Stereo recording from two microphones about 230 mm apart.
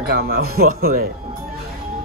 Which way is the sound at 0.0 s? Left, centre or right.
Right.